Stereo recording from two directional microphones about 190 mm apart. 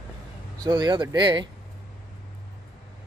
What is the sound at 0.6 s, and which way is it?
Speech, 20° right (ahead or behind).